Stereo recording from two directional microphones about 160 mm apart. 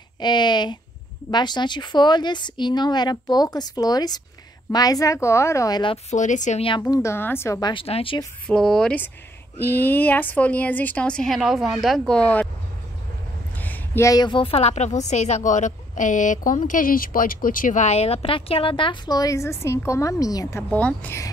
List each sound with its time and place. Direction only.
0.2 s speech: 25° left (ahead or behind)
6.0 s speech: 50° left (ahead or behind)
6.9 s speech: 15° left (ahead or behind)
7.7 s a woman's voice: 35° left (ahead or behind)
8.5 s speech: 5° left (ahead or behind)
13.6 s a woman's voice: 15° left (ahead or behind)